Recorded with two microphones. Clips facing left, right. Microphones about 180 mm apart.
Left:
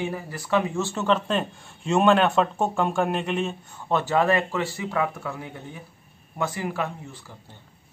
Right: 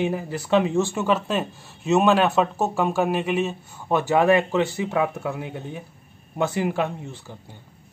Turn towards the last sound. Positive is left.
turn(degrees=-25)  # may be behind; listen again after turning